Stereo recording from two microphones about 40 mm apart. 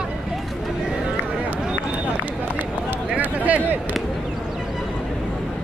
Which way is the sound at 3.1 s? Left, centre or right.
Right.